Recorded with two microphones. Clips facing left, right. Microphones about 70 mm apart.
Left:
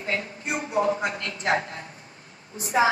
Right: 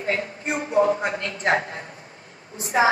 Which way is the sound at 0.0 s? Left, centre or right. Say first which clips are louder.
Right 4 dB; right.